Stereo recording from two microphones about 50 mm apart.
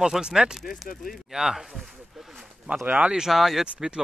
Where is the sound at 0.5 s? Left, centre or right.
Centre.